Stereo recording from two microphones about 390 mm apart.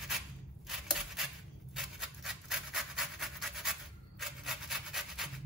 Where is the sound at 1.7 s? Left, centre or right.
Centre.